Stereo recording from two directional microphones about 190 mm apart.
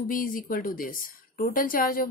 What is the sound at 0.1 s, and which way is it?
A woman's voice, 45° left (ahead or behind).